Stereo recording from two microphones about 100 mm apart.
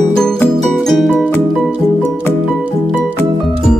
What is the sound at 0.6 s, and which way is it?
Music, centre (ahead or behind).